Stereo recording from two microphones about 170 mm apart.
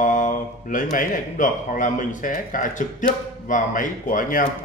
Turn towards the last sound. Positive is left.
turn(degrees=50)  # may be behind; listen again after turning